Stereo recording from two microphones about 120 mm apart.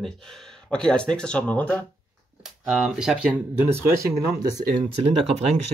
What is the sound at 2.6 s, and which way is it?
Speech, 5° right (ahead or behind).